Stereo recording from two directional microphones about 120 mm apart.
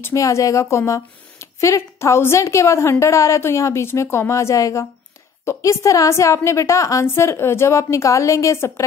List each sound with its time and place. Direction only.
0.0 s speech: 25° left (ahead or behind)